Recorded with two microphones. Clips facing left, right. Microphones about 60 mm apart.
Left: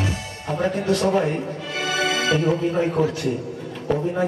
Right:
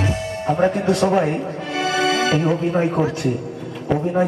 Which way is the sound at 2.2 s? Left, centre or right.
Right.